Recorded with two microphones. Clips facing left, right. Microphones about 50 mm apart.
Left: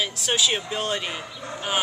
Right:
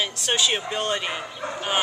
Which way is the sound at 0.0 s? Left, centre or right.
Centre.